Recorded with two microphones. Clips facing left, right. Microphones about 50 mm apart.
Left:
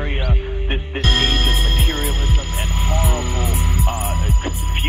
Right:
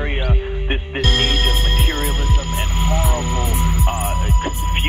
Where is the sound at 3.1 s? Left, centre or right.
Right.